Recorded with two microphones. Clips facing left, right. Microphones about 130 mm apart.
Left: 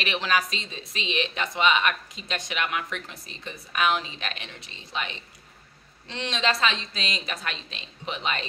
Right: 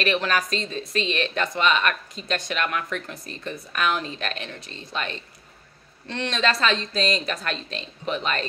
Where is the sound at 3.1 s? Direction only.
55° right (ahead or behind).